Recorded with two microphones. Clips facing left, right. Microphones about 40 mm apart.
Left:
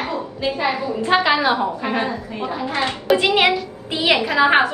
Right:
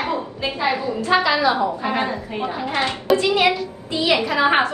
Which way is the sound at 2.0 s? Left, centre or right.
Right.